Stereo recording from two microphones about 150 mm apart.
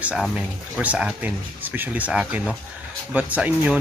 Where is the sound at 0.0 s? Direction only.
5° right (ahead or behind).